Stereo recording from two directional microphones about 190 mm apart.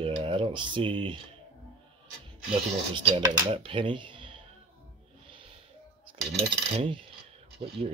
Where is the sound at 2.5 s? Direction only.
30° right (ahead or behind).